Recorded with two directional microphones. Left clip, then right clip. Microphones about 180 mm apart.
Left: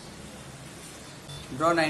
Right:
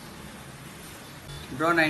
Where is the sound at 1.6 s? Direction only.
15° left (ahead or behind).